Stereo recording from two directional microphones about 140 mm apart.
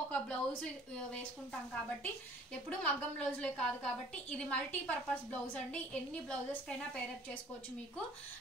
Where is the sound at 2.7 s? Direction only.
5° left (ahead or behind).